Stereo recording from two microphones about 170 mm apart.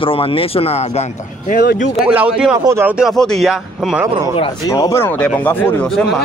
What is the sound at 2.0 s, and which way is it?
Speech, 5° right (ahead or behind).